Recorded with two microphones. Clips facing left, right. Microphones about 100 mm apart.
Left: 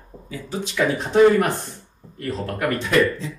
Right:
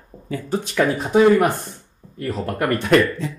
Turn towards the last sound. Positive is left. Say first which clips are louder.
# right 3 dB
turn(degrees=-55)  # may be behind; listen again after turning